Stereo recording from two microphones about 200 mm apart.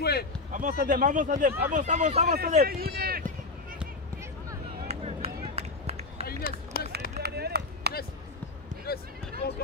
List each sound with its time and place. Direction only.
0.0 s speech: 55° left (ahead or behind)
0.5 s speech: 40° right (ahead or behind)
4.8 s run: 30° right (ahead or behind)
6.7 s run: 50° left (ahead or behind)
7.2 s run: 55° right (ahead or behind)
8.9 s a sound: 50° left (ahead or behind)